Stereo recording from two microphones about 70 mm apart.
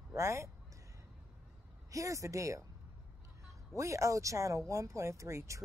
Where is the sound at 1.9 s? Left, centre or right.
Right.